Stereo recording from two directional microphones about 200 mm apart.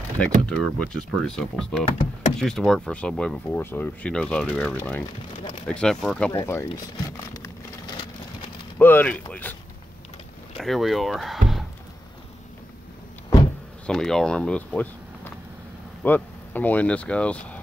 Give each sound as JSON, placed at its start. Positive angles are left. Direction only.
{"t": 0.2, "sound": "speech", "side_deg": 5}
{"t": 6.3, "sound": "a sound", "side_deg": 15}
{"t": 8.7, "sound": "speech", "side_deg": 10}
{"t": 10.6, "sound": "speech", "side_deg": 0}
{"t": 13.8, "sound": "speech", "side_deg": 5}